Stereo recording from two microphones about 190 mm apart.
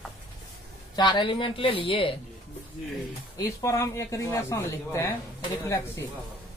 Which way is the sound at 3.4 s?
15° left (ahead or behind).